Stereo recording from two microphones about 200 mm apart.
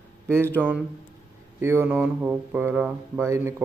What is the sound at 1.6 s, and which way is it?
Speech, 10° right (ahead or behind).